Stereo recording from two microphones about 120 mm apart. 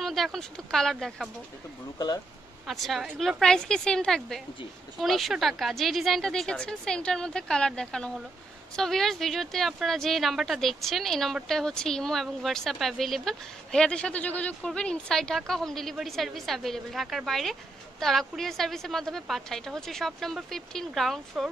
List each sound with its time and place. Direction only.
0.0 s a woman's voice: centre (ahead or behind)
2.6 s a woman's voice: centre (ahead or behind)